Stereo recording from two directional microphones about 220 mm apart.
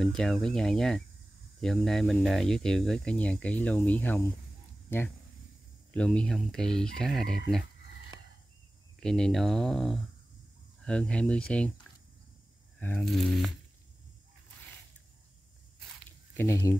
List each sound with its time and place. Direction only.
0.0 s speech: centre (ahead or behind)
4.8 s a sound: 10° left (ahead or behind)
5.9 s speech: 5° left (ahead or behind)
9.0 s speech: centre (ahead or behind)
12.7 s speech: 5° left (ahead or behind)
16.3 s speech: 15° left (ahead or behind)